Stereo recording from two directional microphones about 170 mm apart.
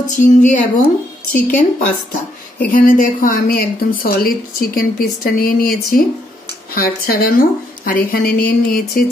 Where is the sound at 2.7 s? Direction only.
55° left (ahead or behind).